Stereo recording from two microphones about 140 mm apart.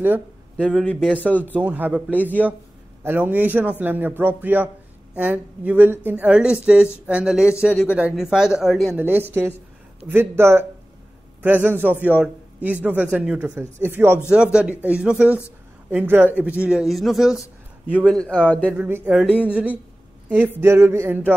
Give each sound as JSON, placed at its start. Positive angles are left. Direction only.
{"t": 0.6, "sound": "speech", "side_deg": 5}
{"t": 1.4, "sound": "a man's voice", "side_deg": -10}
{"t": 8.9, "sound": "a man's voice", "side_deg": -15}
{"t": 18.8, "sound": "a man's voice", "side_deg": -15}
{"t": 20.6, "sound": "a sound", "side_deg": -20}